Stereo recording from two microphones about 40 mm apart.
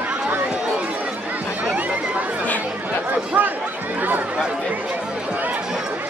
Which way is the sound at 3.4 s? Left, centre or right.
Right.